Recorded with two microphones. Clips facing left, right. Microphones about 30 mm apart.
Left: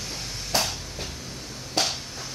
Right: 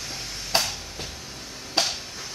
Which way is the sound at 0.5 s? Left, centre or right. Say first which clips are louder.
Right 1 dB; right.